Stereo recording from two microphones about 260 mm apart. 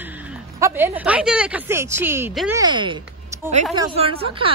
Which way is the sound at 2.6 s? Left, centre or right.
Centre.